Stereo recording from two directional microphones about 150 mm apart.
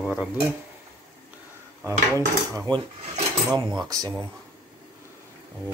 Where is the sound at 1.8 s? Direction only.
20° right (ahead or behind).